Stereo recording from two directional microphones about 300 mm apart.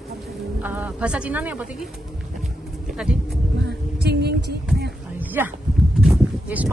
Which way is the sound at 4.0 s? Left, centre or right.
Right.